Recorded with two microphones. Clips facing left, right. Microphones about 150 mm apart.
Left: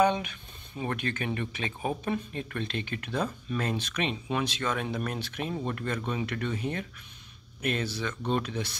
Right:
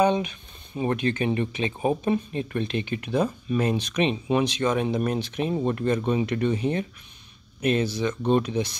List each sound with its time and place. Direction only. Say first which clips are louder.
0.0 s speech: right 3 dB; 20° right (ahead or behind)